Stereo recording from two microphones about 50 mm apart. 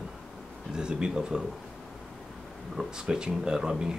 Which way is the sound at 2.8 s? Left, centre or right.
Centre.